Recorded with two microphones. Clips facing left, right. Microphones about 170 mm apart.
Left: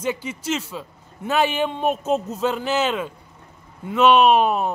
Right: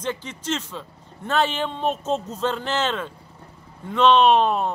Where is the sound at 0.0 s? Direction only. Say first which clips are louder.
Left 3 dB; 10° left (ahead or behind).